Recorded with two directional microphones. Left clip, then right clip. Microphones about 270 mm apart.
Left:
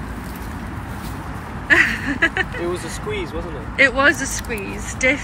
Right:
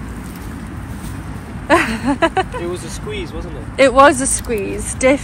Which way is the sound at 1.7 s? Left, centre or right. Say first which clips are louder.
Right 1 dB; centre.